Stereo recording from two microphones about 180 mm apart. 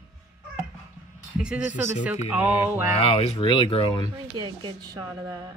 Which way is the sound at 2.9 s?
30° left (ahead or behind).